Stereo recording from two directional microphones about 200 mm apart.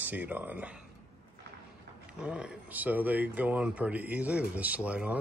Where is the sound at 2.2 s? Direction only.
5° right (ahead or behind).